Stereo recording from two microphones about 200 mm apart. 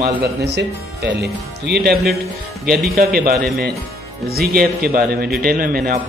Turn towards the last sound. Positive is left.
turn(degrees=-45)  # may be behind; listen again after turning